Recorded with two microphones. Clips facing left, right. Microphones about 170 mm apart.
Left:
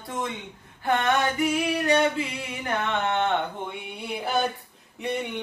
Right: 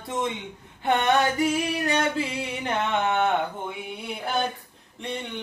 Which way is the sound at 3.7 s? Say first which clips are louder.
Even; centre (ahead or behind).